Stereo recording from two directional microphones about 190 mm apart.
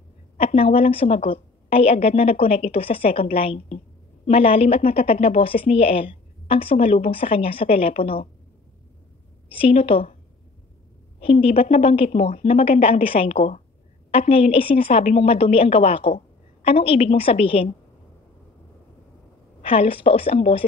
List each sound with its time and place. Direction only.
0.4 s a woman's voice: 30° left (ahead or behind)
9.5 s a woman's voice: 30° left (ahead or behind)
11.1 s a woman's voice: 30° left (ahead or behind)
19.6 s a woman's voice: 30° left (ahead or behind)